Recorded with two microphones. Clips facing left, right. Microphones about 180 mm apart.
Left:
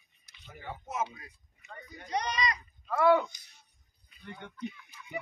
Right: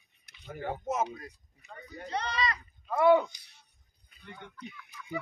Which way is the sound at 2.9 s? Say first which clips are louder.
Right 2 dB; 20° right (ahead or behind).